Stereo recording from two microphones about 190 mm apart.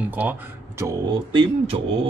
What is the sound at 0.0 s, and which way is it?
A man's voice, 10° right (ahead or behind).